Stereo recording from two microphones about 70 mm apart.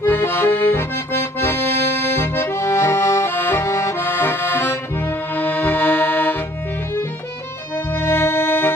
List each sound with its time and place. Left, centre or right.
0.0 s accordion: left
7.9 s accordion: left